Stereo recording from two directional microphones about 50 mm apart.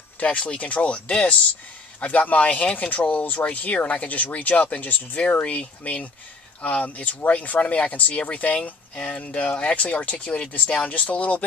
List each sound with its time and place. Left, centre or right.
0.2 s speech: left